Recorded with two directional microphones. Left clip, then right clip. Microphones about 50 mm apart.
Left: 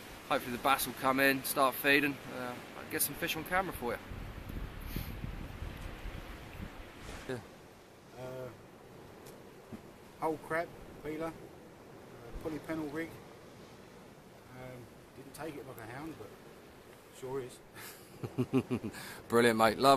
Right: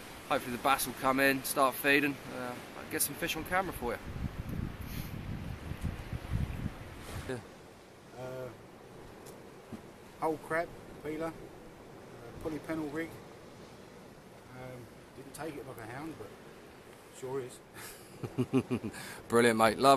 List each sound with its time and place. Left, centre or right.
0.4 s speech: right
0.7 s speech: centre
2.1 s speech: right
2.8 s speech: centre
3.6 s a sound: centre
7.3 s speech: centre
8.2 s vehicle: centre
10.2 s speech: centre
12.4 s speech: centre
15.3 s speech: centre
17.2 s speech: centre